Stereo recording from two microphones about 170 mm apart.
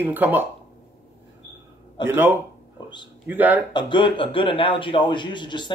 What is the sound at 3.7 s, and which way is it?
Speech, 25° left (ahead or behind).